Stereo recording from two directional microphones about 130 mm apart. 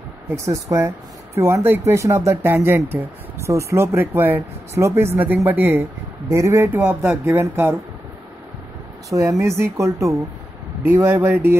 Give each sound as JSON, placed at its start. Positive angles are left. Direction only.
{"t": 0.3, "sound": "speech", "side_deg": -25}
{"t": 9.1, "sound": "speech", "side_deg": -25}